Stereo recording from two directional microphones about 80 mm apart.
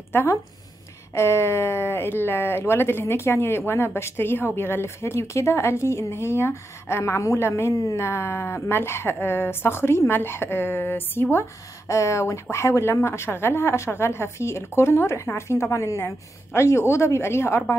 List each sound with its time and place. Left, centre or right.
0.1 s speech: left
11.9 s speech: left